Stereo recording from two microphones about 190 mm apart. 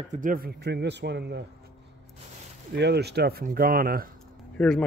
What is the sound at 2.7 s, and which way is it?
Speech, 60° right (ahead or behind).